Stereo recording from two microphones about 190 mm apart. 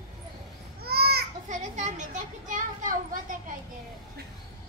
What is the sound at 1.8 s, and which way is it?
A child's voice, 40° right (ahead or behind).